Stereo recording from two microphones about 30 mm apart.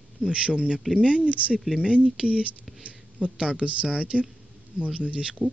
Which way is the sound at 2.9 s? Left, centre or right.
Right.